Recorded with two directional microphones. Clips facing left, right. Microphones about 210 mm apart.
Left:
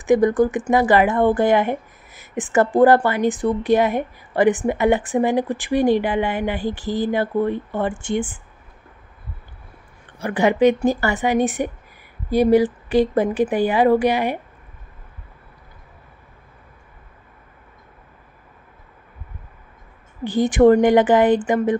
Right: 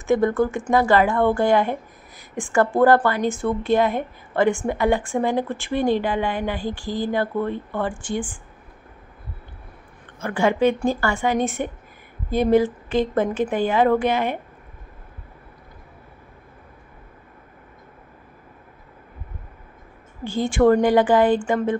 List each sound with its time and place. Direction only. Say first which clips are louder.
0.0 s a woman's voice: left 3 dB; 15° left (ahead or behind)
10.2 s a woman's voice: left 3 dB; 15° left (ahead or behind)
20.2 s a woman's voice: left 4 dB; 20° left (ahead or behind)